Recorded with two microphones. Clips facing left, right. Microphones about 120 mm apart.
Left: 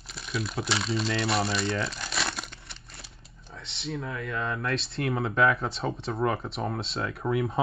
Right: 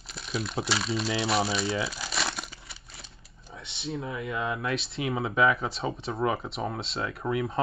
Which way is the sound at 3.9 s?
25° right (ahead or behind).